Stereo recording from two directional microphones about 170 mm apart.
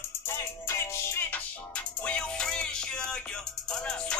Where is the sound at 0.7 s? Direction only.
15° left (ahead or behind).